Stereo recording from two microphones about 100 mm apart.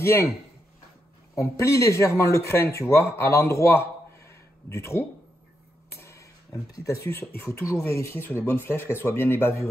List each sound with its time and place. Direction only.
0.0 s speech: 25° left (ahead or behind)
1.3 s speech: 30° left (ahead or behind)
4.3 s a sound: 25° left (ahead or behind)
6.7 s speech: 30° left (ahead or behind)